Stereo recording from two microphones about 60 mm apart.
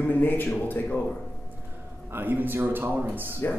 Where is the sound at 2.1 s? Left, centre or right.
Right.